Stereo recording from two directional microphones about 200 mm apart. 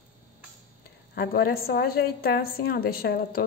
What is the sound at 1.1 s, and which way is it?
A woman's voice, 50° left (ahead or behind).